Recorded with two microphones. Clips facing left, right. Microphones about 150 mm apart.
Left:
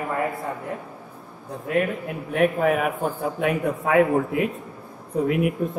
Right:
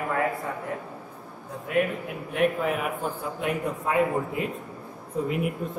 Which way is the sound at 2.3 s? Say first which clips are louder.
Left 5 dB; 55° left (ahead or behind).